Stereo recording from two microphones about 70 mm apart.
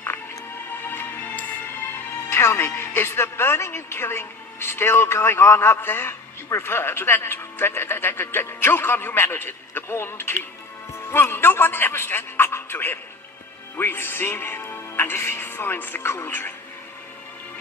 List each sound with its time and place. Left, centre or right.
0.8 s a man's voice: left